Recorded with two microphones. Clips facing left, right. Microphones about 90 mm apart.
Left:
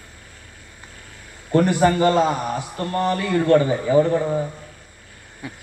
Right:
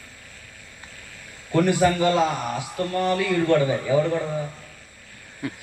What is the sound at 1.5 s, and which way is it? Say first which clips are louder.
A man's voice: left 2 dB; 35° left (ahead or behind).